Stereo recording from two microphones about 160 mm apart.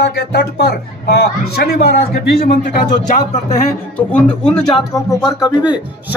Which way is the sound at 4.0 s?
5° left (ahead or behind).